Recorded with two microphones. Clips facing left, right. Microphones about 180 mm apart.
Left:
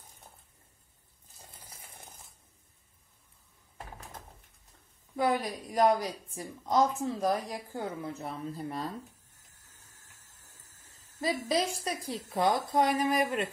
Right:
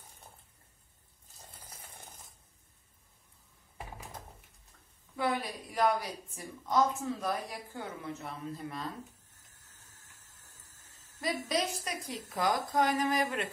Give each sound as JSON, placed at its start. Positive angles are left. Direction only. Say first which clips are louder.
{"t": 5.1, "sound": "a woman's voice", "louder": "left 4 dB", "side_deg": 40}
{"t": 11.1, "sound": "a woman's voice", "louder": "left 3 dB", "side_deg": 30}